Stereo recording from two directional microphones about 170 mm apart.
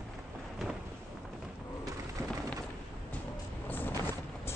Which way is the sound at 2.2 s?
15° right (ahead or behind).